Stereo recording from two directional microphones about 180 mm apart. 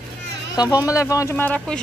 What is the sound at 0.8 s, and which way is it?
Speech, 20° left (ahead or behind).